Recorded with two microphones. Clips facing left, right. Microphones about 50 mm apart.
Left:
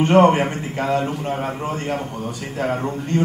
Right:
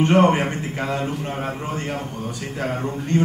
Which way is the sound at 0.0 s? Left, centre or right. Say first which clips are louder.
Left 3 dB; centre.